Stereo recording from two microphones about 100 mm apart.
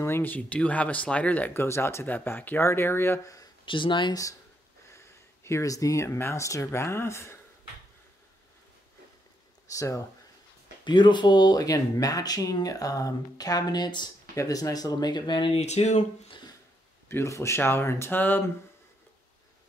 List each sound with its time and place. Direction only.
0.0 s speech: 20° left (ahead or behind)
3.6 s speech: 55° left (ahead or behind)
4.9 s speech: 30° left (ahead or behind)
9.7 s speech: 35° left (ahead or behind)
10.8 s speech: 50° left (ahead or behind)
14.3 s speech: 35° left (ahead or behind); by 15.5 s 50° left (ahead or behind)
15.5 s speech: 90° left
17.1 s speech: 30° left (ahead or behind)